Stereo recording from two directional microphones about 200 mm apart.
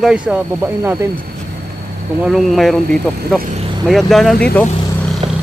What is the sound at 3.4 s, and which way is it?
Speech, 35° right (ahead or behind).